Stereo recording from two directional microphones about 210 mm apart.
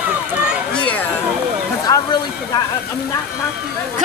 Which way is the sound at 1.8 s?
15° left (ahead or behind).